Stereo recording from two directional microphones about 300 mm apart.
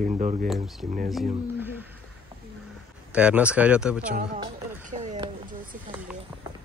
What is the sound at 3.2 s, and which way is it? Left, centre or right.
Speech, centre.